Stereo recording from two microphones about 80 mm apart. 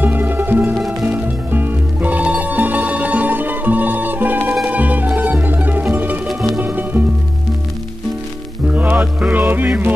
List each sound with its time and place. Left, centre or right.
0.0 s music: right
6.2 s music: centre
6.6 s music: right
8.6 s music: centre